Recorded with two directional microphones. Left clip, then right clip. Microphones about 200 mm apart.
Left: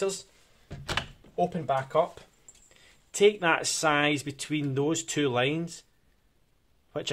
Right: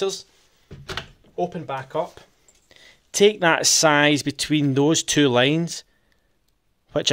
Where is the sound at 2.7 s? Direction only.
45° right (ahead or behind).